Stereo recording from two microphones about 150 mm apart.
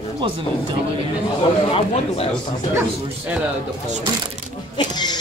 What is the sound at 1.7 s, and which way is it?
Speech, 40° left (ahead or behind).